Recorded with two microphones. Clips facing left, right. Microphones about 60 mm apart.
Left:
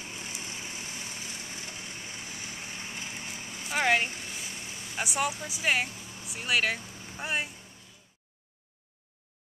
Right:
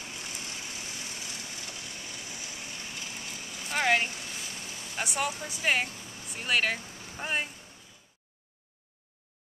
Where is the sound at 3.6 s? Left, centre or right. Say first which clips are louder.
Even; centre.